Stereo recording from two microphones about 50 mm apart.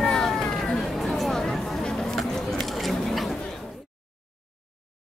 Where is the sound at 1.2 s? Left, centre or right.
Centre.